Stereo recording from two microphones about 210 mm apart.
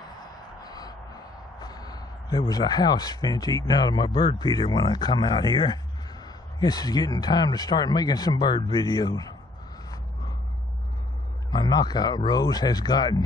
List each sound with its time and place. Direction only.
0.6 s speech: 20° left (ahead or behind)
11.5 s speech: 20° left (ahead or behind)